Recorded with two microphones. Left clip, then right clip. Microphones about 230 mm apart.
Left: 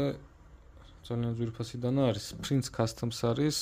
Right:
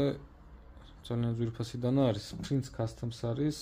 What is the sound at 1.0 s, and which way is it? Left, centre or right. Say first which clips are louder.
A man's voice: even; centre.